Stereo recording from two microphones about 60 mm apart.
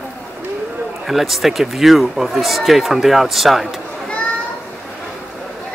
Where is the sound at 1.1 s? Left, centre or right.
Centre.